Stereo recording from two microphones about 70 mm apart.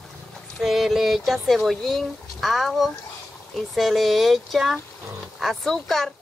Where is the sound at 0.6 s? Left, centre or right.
Centre.